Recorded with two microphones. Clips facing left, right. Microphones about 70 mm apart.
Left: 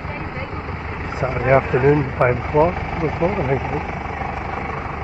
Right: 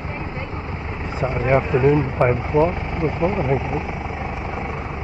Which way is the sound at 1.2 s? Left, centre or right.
Left.